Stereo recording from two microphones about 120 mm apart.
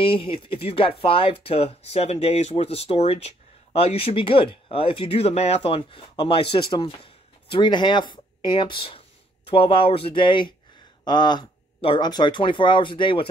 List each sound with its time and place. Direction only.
0.0 s speech: 45° left (ahead or behind)
11.8 s speech: 50° left (ahead or behind)